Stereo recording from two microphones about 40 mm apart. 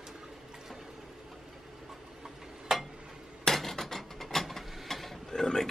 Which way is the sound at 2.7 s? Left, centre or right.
Centre.